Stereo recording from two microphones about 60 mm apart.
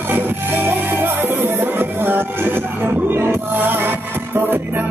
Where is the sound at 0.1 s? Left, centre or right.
Right.